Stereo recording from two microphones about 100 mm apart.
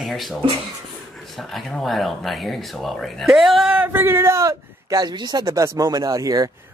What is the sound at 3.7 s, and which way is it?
Speech, 20° right (ahead or behind).